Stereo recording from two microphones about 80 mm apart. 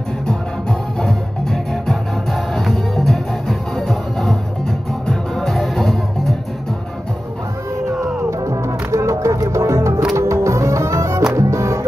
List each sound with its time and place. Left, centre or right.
0.3 s music: centre
8.0 s music: right